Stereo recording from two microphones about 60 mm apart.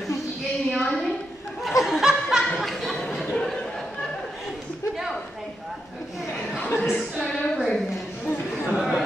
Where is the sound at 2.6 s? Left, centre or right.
Centre.